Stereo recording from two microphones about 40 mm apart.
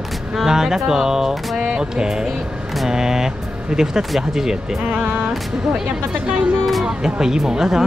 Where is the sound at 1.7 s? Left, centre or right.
Centre.